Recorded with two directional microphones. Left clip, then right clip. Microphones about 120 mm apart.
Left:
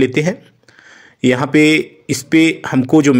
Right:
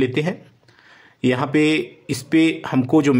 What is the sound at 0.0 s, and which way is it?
Speech, 25° left (ahead or behind).